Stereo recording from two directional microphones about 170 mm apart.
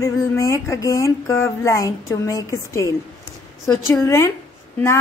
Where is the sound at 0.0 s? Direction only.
20° left (ahead or behind).